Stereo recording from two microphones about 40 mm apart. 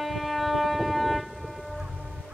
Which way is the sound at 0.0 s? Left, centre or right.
Centre.